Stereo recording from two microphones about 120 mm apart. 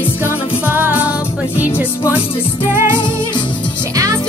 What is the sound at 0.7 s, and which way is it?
Music, 15° right (ahead or behind).